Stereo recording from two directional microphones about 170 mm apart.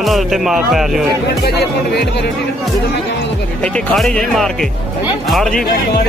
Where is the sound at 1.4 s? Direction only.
75° left (ahead or behind).